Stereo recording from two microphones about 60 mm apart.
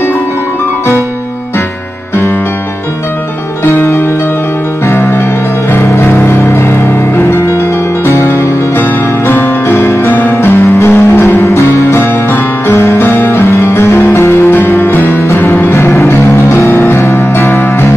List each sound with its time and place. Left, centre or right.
3.6 s music: left